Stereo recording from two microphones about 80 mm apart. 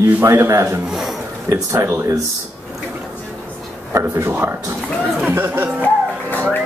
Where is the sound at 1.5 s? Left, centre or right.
Right.